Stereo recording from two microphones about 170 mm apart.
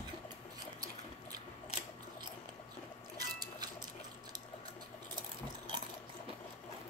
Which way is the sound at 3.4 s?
25° right (ahead or behind).